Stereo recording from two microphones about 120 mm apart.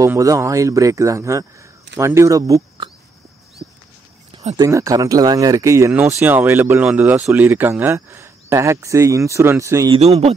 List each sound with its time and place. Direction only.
0.0 s speech: 25° right (ahead or behind)
4.6 s speech: 25° right (ahead or behind)
9.8 s a man's voice: 55° right (ahead or behind)